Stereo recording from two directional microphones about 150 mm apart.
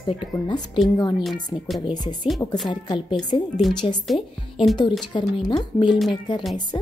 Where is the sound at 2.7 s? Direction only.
30° left (ahead or behind).